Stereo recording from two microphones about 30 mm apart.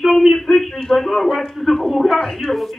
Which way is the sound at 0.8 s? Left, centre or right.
Centre.